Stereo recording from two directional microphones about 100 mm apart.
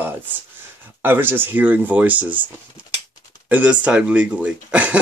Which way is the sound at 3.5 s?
15° right (ahead or behind).